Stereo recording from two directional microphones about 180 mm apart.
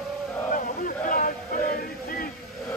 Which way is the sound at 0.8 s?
50° left (ahead or behind).